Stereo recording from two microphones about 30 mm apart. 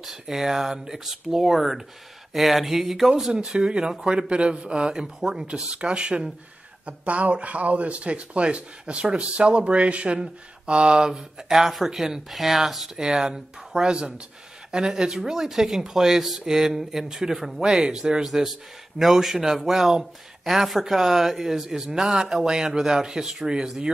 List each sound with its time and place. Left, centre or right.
0.0 s speech: centre
3.3 s speech: right
6.9 s speech: right
11.1 s speech: centre
12.9 s speech: centre
13.9 s speech: right
14.7 s speech: right
18.2 s speech: centre